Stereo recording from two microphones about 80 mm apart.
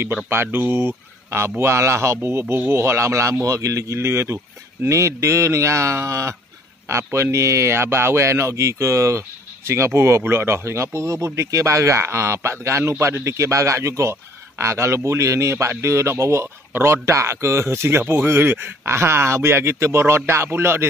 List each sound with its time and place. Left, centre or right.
0.3 s a man's voice: right